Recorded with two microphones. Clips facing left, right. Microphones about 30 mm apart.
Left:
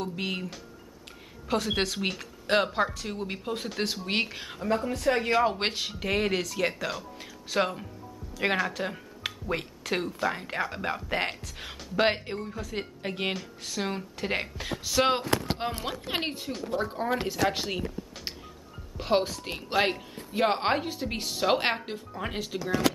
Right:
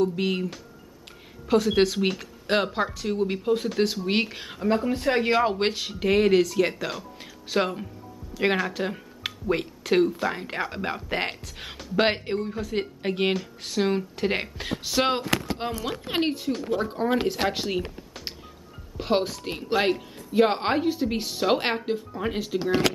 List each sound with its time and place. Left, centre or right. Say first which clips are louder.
0.0 s speech: right 8 dB; centre
4.9 s speech: right 2 dB; right
5.6 s speech: right 4 dB; centre
5.9 s speech: right 10 dB; centre
15.3 s a sound: right 1 dB; right
16.1 s speech: right 7 dB; centre
18.9 s speech: right 1 dB; centre
22.6 s speech: right 5 dB; right